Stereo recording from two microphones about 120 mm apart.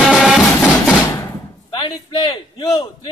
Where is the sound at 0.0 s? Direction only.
Centre (ahead or behind).